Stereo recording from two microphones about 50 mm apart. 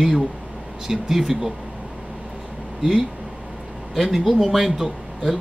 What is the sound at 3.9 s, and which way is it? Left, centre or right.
Speech, centre.